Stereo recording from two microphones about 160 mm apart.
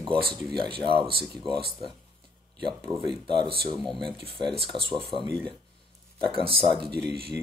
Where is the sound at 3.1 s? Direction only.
30° right (ahead or behind).